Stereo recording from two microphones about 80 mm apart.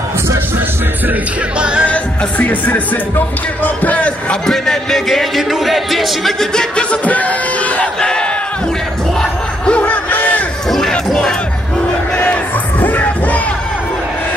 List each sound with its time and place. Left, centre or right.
1.6 s music: centre
1.9 s music: left
4.5 s speech: centre
8.0 s battle cry: centre
10.7 s crowd: centre
12.8 s music: left